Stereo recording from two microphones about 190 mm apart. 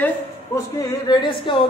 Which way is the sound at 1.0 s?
25° left (ahead or behind).